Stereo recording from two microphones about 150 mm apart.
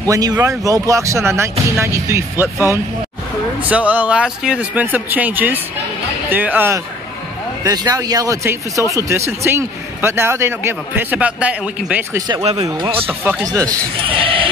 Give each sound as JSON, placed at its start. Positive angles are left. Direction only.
{"t": 0.0, "sound": "a man's voice", "side_deg": -25}
{"t": 7.6, "sound": "a man's voice", "side_deg": -25}
{"t": 13.5, "sound": "speech", "side_deg": -25}
{"t": 14.0, "sound": "bleat", "side_deg": -35}